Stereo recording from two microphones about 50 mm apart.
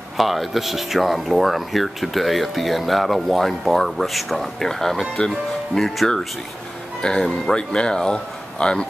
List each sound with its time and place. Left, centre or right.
0.2 s speech: centre